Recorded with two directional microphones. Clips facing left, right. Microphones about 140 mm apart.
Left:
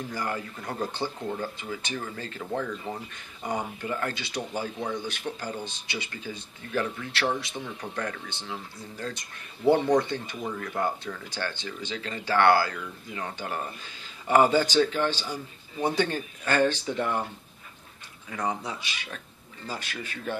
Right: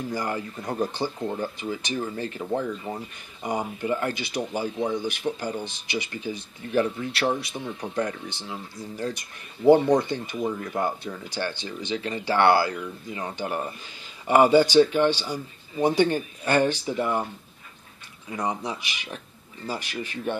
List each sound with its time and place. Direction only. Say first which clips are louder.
0.1 s a man's voice: right 3 dB; 15° right (ahead or behind)
7.8 s speech: right 7 dB; 25° right (ahead or behind)
8.3 s a man's voice: right 2 dB; 10° right (ahead or behind)
18.3 s a man's voice: right 2 dB; 15° right (ahead or behind)